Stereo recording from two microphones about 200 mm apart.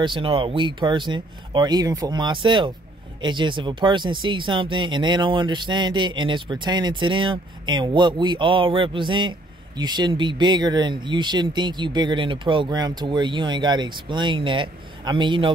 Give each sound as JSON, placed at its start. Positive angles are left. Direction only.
{"t": 0.0, "sound": "speech", "side_deg": -25}